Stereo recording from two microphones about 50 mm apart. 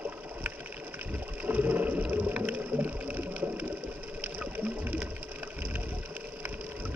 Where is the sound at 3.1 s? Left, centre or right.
Right.